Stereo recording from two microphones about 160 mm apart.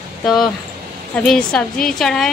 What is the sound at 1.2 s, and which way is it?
A woman's voice, 5° left (ahead or behind).